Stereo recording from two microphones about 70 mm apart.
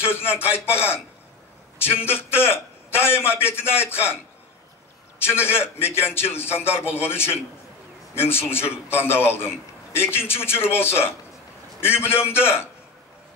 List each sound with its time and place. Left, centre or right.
0.0 s a man's voice: left
5.2 s a man's voice: left